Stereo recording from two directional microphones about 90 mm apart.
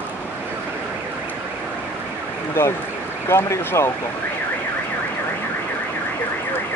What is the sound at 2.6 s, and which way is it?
Speech, 25° left (ahead or behind).